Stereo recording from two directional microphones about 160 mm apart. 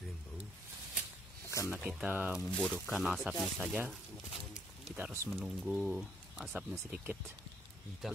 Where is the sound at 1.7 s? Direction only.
5° right (ahead or behind).